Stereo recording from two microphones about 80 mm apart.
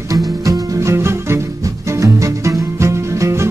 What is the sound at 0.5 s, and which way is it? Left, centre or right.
Music, right.